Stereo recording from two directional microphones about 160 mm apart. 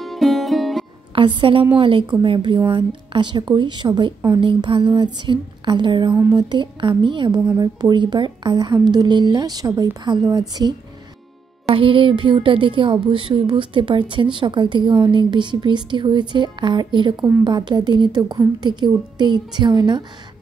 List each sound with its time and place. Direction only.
0.0 s music: centre (ahead or behind)
1.1 s a woman's voice: 35° right (ahead or behind)